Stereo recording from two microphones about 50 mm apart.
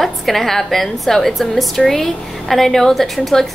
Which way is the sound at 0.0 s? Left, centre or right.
Centre.